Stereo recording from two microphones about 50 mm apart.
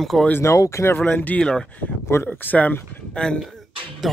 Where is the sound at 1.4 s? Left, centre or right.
Centre.